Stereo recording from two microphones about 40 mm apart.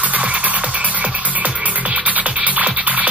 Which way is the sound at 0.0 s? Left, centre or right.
Right.